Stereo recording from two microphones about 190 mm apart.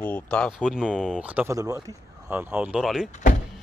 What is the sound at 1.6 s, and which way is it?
Speech, 20° right (ahead or behind).